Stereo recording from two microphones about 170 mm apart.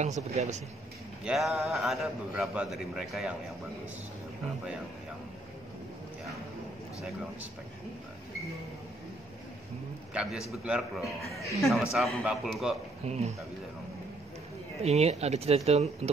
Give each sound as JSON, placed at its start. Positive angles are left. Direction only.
{"t": 0.0, "sound": "speech", "side_deg": -45}
{"t": 1.2, "sound": "a man's voice", "side_deg": 0}
{"t": 10.5, "sound": "a man's voice", "side_deg": -5}
{"t": 13.0, "sound": "speech", "side_deg": -40}
{"t": 14.8, "sound": "speech", "side_deg": -40}